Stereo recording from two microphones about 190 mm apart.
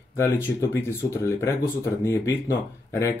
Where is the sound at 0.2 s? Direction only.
10° left (ahead or behind).